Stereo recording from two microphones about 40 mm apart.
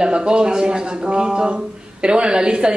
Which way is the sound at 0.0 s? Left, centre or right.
Right.